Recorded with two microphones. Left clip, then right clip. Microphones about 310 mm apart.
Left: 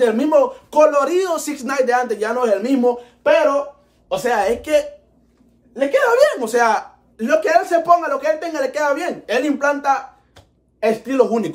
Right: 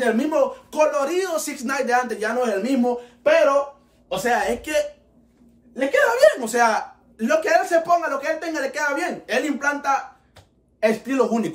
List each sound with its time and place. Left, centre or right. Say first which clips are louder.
0.0 s a woman's voice: left 5 dB; centre
4.1 s a woman's voice: left 4 dB; centre